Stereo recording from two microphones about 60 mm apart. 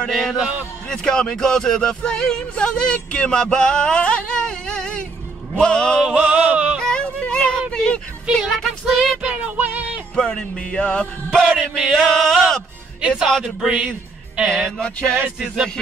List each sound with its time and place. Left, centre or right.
0.1 s a sound: centre
0.8 s speech: centre
5.6 s music: centre
6.1 s music: centre
6.8 s music: centre
7.7 s a sound: centre
8.3 s speech: centre
9.2 s music: centre
10.1 s music: centre
13.4 s a sound: centre
14.5 s music: centre
15.3 s speech: centre